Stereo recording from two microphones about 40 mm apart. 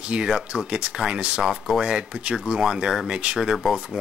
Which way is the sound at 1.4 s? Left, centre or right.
Centre.